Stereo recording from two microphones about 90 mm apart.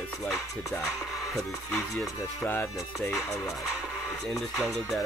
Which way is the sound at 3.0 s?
Centre (ahead or behind).